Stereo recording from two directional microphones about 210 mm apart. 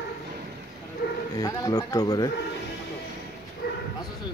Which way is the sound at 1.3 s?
15° left (ahead or behind).